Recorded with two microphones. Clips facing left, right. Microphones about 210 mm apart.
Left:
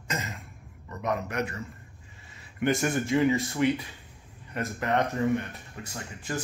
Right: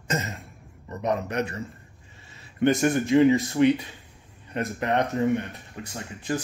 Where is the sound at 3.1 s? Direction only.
30° right (ahead or behind).